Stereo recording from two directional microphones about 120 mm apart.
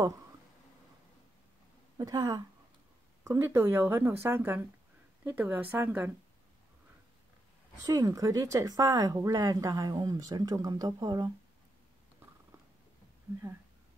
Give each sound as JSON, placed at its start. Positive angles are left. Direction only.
{"t": 2.0, "sound": "a woman's voice", "side_deg": -30}
{"t": 7.8, "sound": "speech", "side_deg": -30}